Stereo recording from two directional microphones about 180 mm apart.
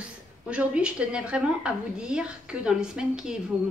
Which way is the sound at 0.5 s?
5° right (ahead or behind).